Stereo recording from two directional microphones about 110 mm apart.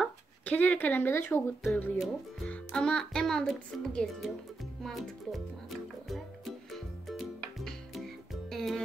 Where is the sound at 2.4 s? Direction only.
10° left (ahead or behind).